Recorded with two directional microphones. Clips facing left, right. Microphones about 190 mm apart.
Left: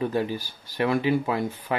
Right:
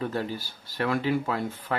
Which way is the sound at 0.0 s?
15° left (ahead or behind).